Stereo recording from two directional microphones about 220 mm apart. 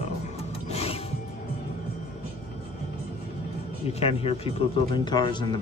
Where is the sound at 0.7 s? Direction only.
25° left (ahead or behind).